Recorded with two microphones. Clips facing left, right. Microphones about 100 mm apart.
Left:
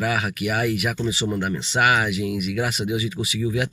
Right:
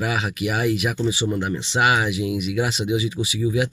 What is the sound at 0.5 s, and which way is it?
Speech, 20° right (ahead or behind).